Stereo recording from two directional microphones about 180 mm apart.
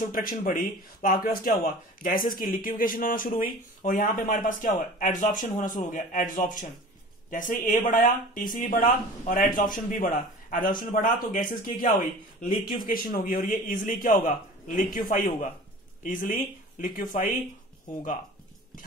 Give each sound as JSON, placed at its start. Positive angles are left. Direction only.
{"t": 0.0, "sound": "speech", "side_deg": 50}